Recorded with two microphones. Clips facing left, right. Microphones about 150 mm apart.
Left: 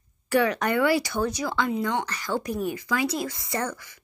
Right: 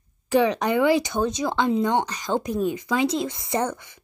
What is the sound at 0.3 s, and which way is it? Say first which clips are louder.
Speech: right 3 dB; 15° right (ahead or behind).